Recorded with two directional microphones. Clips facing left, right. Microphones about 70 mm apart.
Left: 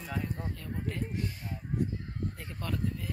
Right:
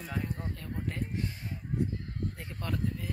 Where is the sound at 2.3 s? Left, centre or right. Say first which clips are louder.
Even; centre.